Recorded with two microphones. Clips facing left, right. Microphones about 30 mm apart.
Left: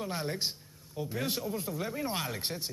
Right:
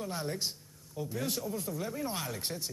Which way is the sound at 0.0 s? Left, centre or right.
Left.